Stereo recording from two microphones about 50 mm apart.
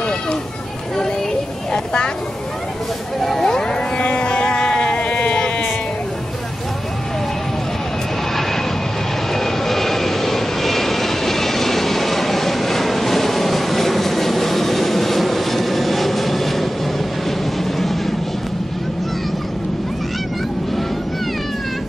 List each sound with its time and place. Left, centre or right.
3.2 s a sound: centre
4.0 s sheep: left
9.3 s vehicle: centre